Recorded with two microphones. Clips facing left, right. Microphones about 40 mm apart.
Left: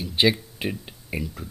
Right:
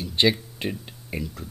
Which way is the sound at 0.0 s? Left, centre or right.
Centre.